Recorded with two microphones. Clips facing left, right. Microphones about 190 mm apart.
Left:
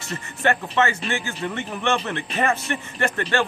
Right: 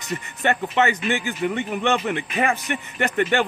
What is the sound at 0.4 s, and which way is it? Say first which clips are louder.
A man's voice: even; 20° right (ahead or behind).